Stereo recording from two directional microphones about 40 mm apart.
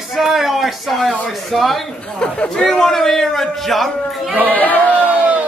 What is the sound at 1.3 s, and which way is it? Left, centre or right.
Speech, centre.